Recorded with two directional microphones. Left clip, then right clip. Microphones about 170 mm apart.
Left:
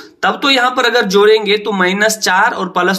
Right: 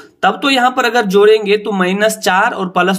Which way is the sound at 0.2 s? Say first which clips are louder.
Even; 35° right (ahead or behind).